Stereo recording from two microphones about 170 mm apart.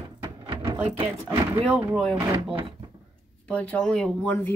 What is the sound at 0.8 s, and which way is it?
Speech, 35° right (ahead or behind).